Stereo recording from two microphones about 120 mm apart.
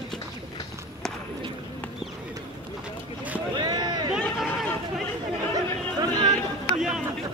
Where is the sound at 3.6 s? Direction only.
35° right (ahead or behind).